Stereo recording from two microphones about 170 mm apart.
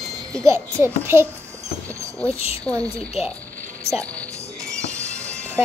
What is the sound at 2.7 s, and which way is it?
Speech, 20° right (ahead or behind).